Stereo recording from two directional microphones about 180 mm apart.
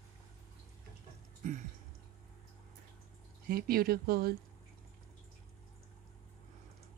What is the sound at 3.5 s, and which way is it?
Speech, 55° right (ahead or behind).